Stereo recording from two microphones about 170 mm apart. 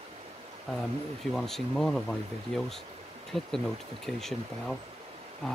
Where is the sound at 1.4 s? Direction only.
Centre (ahead or behind).